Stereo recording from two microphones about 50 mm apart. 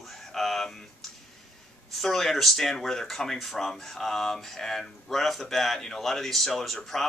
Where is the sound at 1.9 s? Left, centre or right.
Centre.